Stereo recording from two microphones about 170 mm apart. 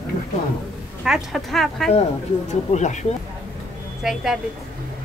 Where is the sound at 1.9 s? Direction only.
45° left (ahead or behind).